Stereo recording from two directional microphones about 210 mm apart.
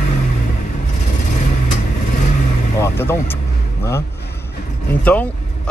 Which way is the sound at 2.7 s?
10° left (ahead or behind).